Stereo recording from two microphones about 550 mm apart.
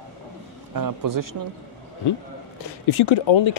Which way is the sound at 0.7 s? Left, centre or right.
Right.